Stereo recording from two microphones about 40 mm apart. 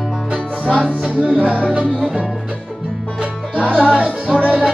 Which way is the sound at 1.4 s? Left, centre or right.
Right.